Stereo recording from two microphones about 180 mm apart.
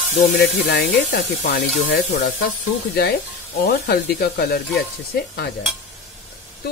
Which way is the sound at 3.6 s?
65° left (ahead or behind).